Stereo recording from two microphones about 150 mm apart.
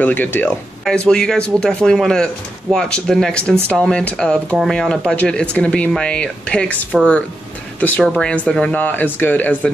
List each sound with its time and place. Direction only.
0.0 s speech: 10° left (ahead or behind)